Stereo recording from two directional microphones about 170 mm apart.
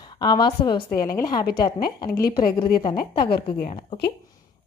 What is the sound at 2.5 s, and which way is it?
A woman's voice, 30° left (ahead or behind).